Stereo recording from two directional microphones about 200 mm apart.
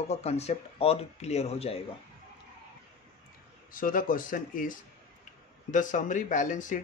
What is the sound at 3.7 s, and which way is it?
Speech, 45° left (ahead or behind).